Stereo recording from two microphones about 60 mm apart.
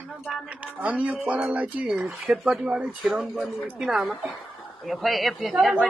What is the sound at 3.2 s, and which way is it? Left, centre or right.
Speech, centre.